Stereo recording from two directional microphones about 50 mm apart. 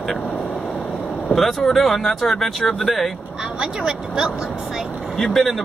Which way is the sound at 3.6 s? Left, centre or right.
Centre.